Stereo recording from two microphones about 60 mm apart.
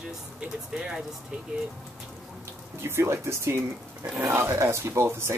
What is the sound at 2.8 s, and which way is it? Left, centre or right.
Speech, right.